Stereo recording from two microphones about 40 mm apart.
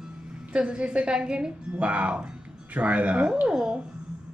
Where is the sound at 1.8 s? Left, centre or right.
Right.